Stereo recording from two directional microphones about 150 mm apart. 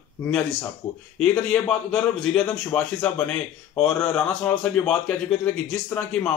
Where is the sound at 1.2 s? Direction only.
5° left (ahead or behind).